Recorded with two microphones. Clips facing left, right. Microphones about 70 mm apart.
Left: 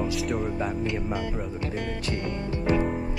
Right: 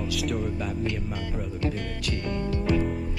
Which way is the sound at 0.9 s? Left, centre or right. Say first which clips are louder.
Left 4 dB; centre.